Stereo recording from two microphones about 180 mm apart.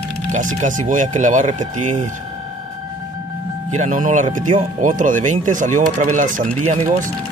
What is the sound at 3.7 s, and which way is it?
Speech, 45° right (ahead or behind).